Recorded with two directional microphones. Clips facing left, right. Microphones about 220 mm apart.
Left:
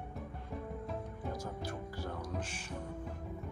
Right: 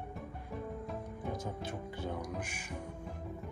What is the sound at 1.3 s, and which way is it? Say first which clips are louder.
Speech: right 1 dB; 20° right (ahead or behind).